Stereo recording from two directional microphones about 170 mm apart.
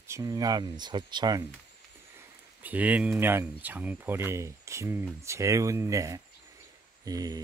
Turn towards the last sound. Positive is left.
turn(degrees=-20)  # may be behind; listen again after turning